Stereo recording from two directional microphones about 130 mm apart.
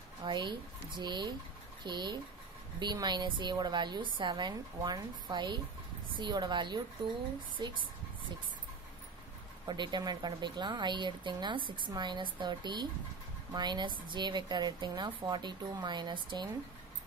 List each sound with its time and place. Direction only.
0.2 s speech: 35° right (ahead or behind)
9.7 s speech: 35° right (ahead or behind)